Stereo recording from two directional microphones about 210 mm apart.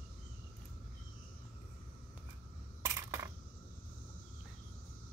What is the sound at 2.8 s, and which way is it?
Coin, 15° right (ahead or behind).